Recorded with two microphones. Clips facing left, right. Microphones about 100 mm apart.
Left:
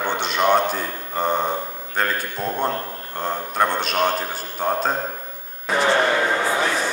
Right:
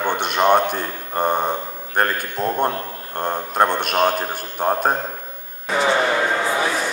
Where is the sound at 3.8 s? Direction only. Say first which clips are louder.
Right 2 dB; 55° right (ahead or behind).